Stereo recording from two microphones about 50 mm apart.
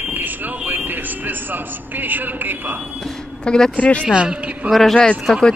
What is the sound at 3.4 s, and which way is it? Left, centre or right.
Speech, centre.